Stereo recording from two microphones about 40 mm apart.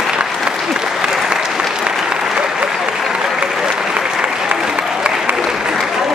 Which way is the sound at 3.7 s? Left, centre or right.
Centre.